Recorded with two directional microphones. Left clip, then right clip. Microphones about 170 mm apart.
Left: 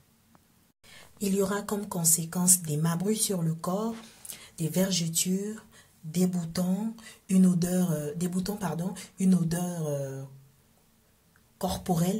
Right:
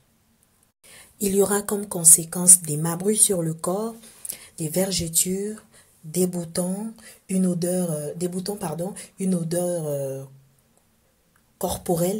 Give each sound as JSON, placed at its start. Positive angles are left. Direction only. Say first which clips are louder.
{"t": 0.8, "sound": "a sound", "louder": "right 6 dB", "side_deg": -25}
{"t": 1.9, "sound": "a woman's voice", "louder": "right 8 dB", "side_deg": -25}
{"t": 4.4, "sound": "a woman's voice", "louder": "right 5 dB", "side_deg": -15}
{"t": 6.7, "sound": "speech", "louder": "right 1 dB", "side_deg": -10}
{"t": 11.5, "sound": "a woman's voice", "louder": "right 6 dB", "side_deg": -20}